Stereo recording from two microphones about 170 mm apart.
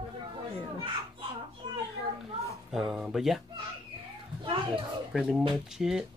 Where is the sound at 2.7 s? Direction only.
Centre (ahead or behind).